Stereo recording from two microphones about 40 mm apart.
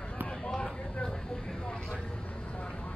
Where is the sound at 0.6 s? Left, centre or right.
Left.